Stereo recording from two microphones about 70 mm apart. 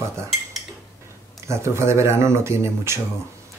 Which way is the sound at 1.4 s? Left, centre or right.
Right.